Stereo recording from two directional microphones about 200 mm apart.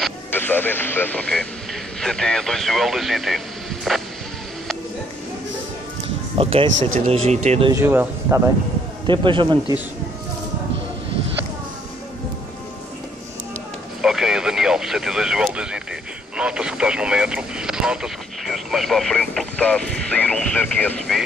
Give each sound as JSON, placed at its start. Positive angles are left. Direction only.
{"t": 0.0, "sound": "speech", "side_deg": 10}
{"t": 6.3, "sound": "speech", "side_deg": -25}
{"t": 7.7, "sound": "speech", "side_deg": -10}
{"t": 9.0, "sound": "a man's voice", "side_deg": -25}
{"t": 14.0, "sound": "a sound", "side_deg": 0}
{"t": 16.3, "sound": "radio", "side_deg": -5}